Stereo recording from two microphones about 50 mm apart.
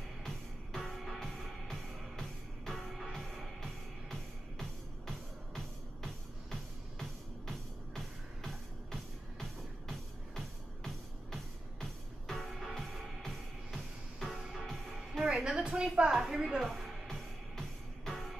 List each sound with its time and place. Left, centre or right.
0.7 s music: centre
15.2 s a woman's voice: centre
16.1 s a woman's voice: centre
16.5 s music: centre